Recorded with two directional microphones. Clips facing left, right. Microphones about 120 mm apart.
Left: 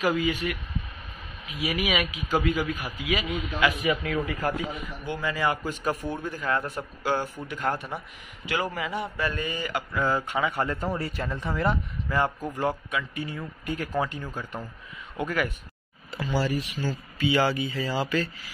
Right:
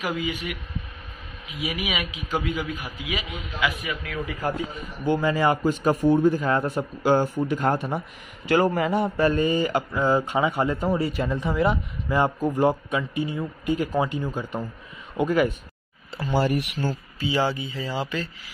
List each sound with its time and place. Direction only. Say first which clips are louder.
0.0 s a man's voice: left 3 dB; 15° right (ahead or behind)
5.0 s speech: right 7 dB; 35° right (ahead or behind)
8.5 s speech: right 9 dB; 40° right (ahead or behind); by 15.5 s 20° right (ahead or behind)
16.3 s speech: right 4 dB; 55° right (ahead or behind)
17.2 s speech: left 1 dB; 25° right (ahead or behind)